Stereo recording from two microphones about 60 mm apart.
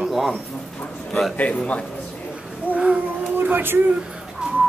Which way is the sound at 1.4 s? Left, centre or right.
Left.